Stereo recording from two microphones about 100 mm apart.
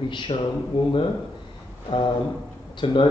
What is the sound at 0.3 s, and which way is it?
Speech, 65° left (ahead or behind).